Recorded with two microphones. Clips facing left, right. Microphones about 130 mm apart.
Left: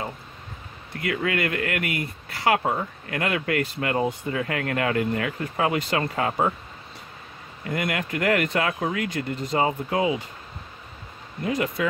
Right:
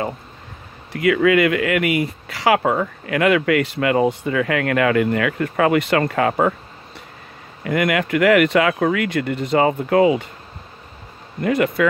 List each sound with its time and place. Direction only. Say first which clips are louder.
1.0 s speech: right 10 dB; 90° right; by 6.5 s 65° right (ahead or behind)
7.6 s speech: right 8 dB; 80° right; by 10.2 s 65° right (ahead or behind)
11.4 s speech: right 7 dB; 65° right (ahead or behind)